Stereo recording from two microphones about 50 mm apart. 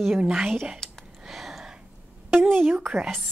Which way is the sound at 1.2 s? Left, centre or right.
Centre.